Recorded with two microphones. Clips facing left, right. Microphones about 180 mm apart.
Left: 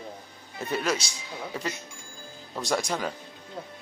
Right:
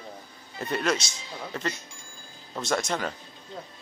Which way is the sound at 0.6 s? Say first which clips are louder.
Right 1 dB; 10° left (ahead or behind).